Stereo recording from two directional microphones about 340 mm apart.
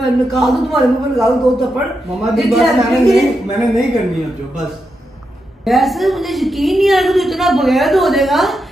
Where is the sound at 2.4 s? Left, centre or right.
Centre.